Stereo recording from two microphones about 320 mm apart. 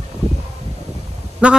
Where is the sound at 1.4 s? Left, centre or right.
Centre.